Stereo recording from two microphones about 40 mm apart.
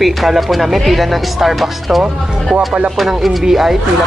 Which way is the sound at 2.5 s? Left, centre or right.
Right.